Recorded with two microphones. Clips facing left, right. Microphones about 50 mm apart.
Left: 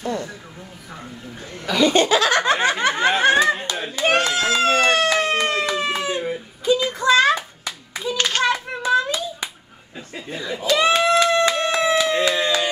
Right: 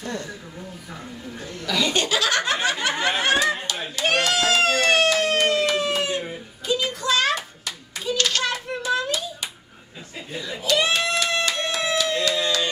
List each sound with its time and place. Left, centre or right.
0.0 s speech: centre
1.5 s chuckle: left
6.7 s clapping: left
10.4 s a sound: left